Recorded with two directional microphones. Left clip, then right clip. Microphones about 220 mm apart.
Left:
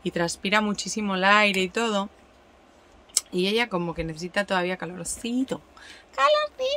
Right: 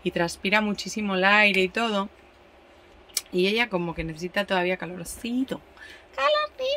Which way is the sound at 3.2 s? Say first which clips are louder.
Right 1 dB; 5° left (ahead or behind).